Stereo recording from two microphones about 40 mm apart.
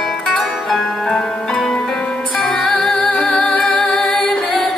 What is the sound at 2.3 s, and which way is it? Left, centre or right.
Music, centre.